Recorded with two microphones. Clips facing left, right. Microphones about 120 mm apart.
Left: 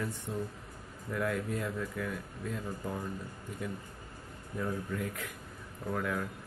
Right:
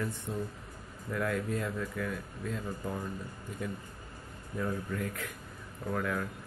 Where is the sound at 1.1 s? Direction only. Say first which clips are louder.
Right 1 dB; 15° left (ahead or behind).